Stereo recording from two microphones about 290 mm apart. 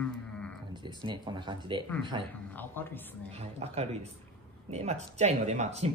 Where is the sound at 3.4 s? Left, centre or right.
Right.